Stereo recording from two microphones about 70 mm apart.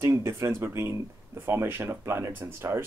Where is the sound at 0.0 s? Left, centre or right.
Right.